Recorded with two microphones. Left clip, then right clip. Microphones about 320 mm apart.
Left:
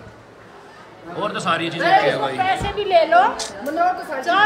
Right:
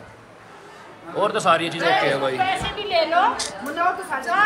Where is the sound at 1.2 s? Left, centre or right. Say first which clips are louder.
Right 3 dB; centre.